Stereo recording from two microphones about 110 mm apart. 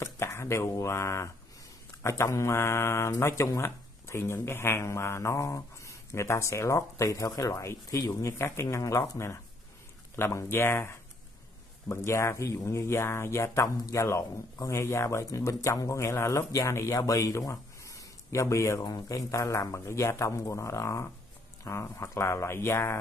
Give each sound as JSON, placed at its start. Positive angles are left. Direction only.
{"t": 0.0, "sound": "speech", "side_deg": 25}